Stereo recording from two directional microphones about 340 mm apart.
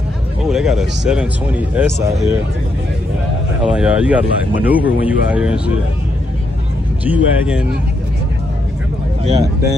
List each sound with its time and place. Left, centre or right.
0.5 s speech: centre
3.6 s speech: centre
7.1 s speech: centre
9.2 s speech: centre